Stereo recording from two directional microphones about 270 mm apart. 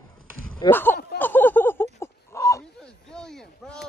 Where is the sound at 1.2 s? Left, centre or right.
Centre.